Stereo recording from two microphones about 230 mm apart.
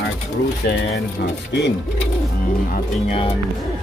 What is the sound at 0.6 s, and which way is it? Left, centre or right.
Speech, left.